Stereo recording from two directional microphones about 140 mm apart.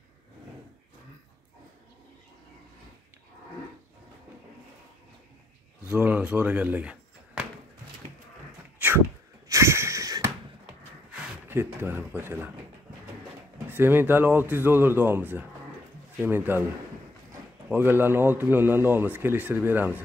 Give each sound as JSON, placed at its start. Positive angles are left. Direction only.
{"t": 5.9, "sound": "speech", "side_deg": -10}
{"t": 8.7, "sound": "sneeze", "side_deg": -15}
{"t": 9.5, "sound": "a sound", "side_deg": -20}
{"t": 11.1, "sound": "speech", "side_deg": -15}
{"t": 13.7, "sound": "speech", "side_deg": -15}
{"t": 17.6, "sound": "speech", "side_deg": -15}